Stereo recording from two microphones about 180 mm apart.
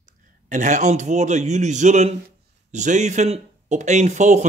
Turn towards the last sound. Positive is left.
turn(degrees=-40)  # may be behind; listen again after turning